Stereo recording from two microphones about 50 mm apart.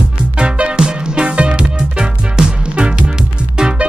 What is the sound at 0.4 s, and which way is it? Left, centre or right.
Music, centre.